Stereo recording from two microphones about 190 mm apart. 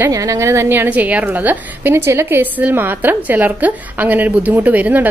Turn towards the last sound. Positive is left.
turn(degrees=-10)  # may be behind; listen again after turning